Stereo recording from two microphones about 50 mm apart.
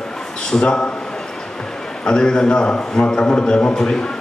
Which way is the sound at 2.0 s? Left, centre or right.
Centre.